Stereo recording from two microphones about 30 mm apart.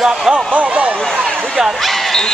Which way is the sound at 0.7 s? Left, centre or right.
Right.